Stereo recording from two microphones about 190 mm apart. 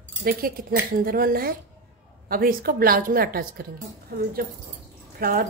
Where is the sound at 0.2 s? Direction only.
50° right (ahead or behind).